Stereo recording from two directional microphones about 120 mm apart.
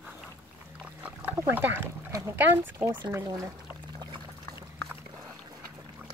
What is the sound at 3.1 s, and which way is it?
Speech, 20° right (ahead or behind).